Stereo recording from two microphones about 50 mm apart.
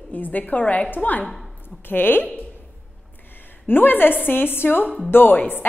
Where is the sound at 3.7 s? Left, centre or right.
Left.